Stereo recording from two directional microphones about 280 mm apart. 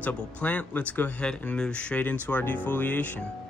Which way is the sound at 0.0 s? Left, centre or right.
Centre.